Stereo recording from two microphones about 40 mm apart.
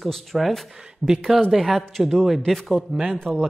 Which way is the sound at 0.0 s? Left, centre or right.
Centre.